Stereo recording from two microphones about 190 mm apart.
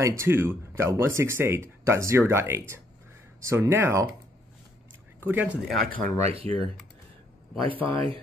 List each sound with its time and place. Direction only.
0.0 s speech: 15° right (ahead or behind)
5.2 s speech: 10° right (ahead or behind)
5.9 s speech: 35° right (ahead or behind)
7.8 s speech: 25° right (ahead or behind)